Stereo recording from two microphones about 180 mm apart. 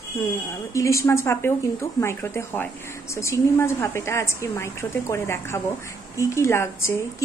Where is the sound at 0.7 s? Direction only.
15° left (ahead or behind).